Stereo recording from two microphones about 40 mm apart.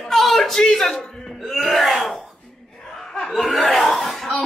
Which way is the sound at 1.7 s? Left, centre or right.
Centre.